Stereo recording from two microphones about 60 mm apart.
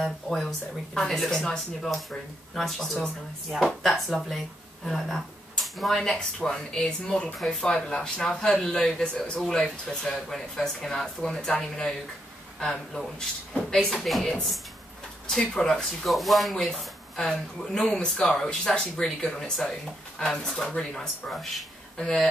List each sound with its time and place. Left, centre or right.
0.0 s speech: centre